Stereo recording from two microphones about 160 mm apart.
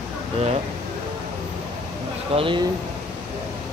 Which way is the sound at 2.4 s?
30° right (ahead or behind).